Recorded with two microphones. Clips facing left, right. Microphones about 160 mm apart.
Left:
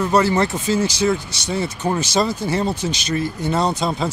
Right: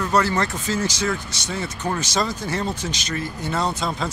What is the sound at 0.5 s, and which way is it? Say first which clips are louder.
Speech: left 5 dB; 10° left (ahead or behind).